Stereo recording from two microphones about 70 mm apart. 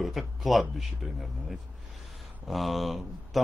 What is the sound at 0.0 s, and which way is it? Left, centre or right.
Speech, centre.